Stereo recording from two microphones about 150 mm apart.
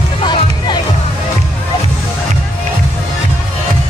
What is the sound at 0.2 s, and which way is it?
Music, 30° left (ahead or behind).